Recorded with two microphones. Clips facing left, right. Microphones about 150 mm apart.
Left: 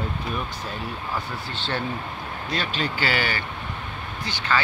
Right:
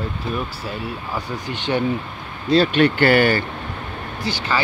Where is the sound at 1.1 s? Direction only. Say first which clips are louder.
Right 4 dB; 15° right (ahead or behind).